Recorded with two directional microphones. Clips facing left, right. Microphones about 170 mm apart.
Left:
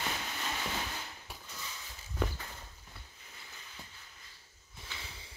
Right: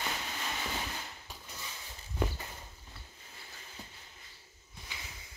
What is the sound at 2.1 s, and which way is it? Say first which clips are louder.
Walk: right 1 dB; 15° right (ahead or behind).